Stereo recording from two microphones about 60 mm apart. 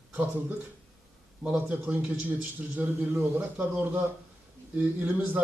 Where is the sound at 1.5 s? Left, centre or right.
Right.